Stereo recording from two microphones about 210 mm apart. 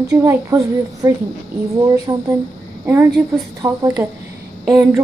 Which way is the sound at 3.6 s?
15° right (ahead or behind).